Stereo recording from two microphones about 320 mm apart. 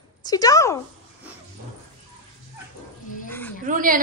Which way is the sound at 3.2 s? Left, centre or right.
Centre.